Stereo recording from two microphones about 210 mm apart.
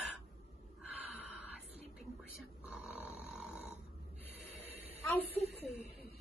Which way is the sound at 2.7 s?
5° right (ahead or behind).